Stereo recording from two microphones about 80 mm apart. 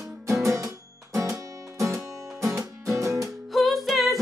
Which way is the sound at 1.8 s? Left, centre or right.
Right.